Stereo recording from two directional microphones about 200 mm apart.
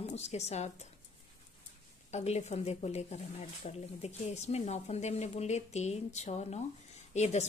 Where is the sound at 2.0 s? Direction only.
35° left (ahead or behind).